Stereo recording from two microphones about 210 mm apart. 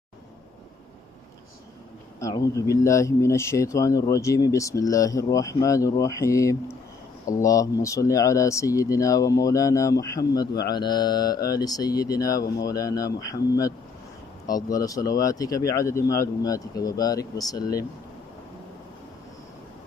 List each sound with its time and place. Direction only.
2.1 s speech: 15° left (ahead or behind)
10.7 s mantra: 20° left (ahead or behind)
11.4 s speech: 15° left (ahead or behind)